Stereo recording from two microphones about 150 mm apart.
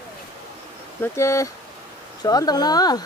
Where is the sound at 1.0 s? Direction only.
20° left (ahead or behind).